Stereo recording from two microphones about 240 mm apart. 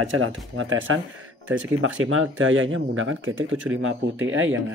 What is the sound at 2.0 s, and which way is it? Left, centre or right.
Speech, right.